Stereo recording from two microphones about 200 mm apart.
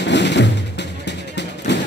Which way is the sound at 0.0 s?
60° left (ahead or behind).